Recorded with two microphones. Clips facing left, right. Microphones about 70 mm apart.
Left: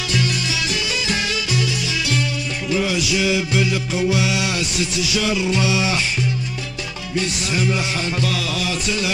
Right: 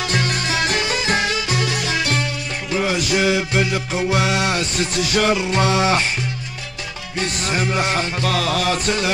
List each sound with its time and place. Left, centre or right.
0.1 s music: right
7.2 s music: right